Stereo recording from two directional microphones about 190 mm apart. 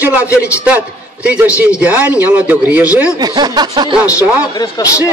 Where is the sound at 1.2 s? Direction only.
5° right (ahead or behind).